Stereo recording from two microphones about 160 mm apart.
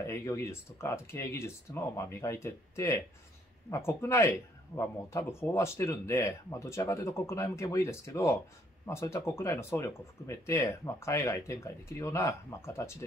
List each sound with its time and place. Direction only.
0.0 s speech: 15° left (ahead or behind)